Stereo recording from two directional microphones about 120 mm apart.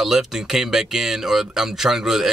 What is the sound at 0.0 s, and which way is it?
Speech, 5° right (ahead or behind).